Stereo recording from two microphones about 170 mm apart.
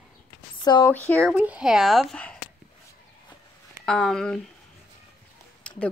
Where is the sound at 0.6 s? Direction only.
25° left (ahead or behind).